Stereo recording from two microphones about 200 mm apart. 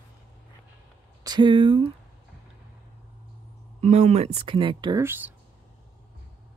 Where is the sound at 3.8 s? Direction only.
35° right (ahead or behind).